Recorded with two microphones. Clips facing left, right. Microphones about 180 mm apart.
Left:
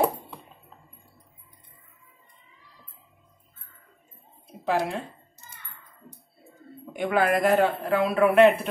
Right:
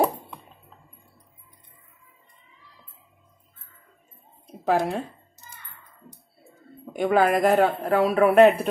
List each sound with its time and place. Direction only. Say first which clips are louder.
4.6 s a man's voice: right 3 dB; 45° right (ahead or behind)
7.0 s a man's voice: right 3 dB; 40° right (ahead or behind)